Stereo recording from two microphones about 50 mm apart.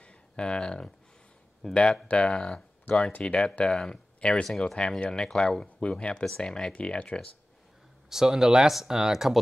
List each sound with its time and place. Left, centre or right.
0.0 s a sound: centre
1.6 s speech: centre
5.8 s speech: left
8.1 s speech: centre